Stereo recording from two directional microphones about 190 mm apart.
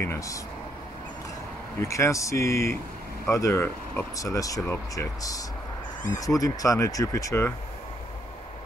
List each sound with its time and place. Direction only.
0.0 s speech: 15° left (ahead or behind)
1.8 s speech: 15° left (ahead or behind)